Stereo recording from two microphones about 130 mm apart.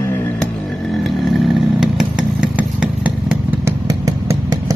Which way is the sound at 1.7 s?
5° right (ahead or behind).